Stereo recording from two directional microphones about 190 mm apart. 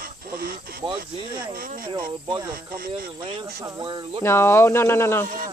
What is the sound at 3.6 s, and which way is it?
Speech, 20° right (ahead or behind).